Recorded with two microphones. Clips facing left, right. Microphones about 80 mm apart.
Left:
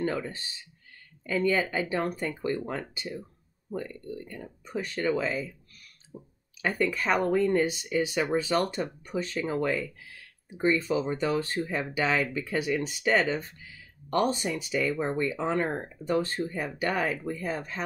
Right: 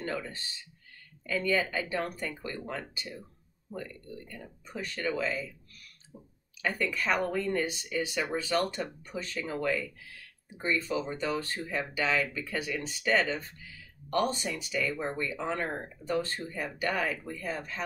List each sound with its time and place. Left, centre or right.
0.0 s speech: left
4.3 s speech: left
6.6 s speech: left
10.9 s speech: left